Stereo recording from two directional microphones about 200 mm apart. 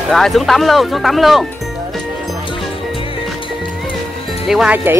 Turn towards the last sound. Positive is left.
turn(degrees=-5)  # may be behind; listen again after turning